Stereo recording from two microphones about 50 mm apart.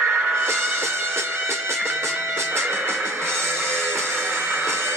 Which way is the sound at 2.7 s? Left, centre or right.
Right.